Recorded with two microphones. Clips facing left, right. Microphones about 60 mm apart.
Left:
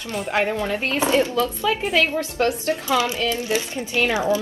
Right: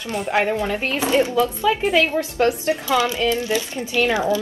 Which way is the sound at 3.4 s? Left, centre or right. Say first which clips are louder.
Right 1 dB; left.